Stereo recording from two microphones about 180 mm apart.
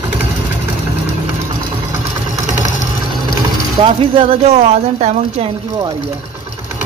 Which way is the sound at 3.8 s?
30° right (ahead or behind).